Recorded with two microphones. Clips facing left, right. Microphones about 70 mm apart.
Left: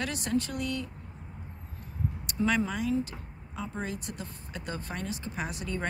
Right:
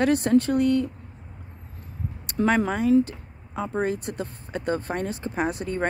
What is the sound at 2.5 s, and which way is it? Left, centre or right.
Speech, right.